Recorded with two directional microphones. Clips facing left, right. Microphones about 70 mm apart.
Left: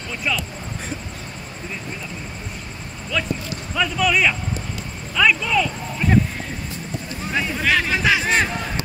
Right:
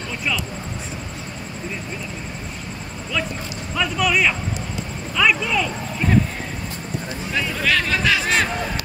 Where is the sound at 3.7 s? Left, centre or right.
Centre.